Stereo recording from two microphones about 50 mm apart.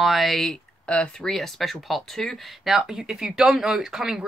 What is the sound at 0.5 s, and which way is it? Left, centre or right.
Speech, centre.